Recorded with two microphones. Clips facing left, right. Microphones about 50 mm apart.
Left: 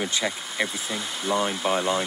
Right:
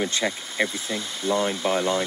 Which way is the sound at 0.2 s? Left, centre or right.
Right.